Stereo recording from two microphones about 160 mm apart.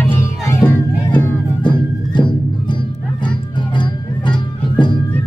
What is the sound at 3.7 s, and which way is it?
Music, 30° left (ahead or behind).